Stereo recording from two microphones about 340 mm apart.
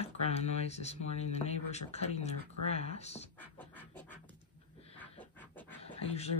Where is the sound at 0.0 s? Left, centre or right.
Centre.